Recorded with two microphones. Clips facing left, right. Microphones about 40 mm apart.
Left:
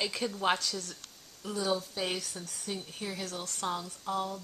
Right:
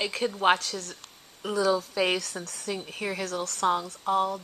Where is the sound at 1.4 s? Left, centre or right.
Right.